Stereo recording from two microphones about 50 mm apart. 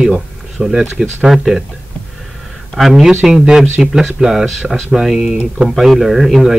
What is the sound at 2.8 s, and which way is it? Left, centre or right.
Speech, centre.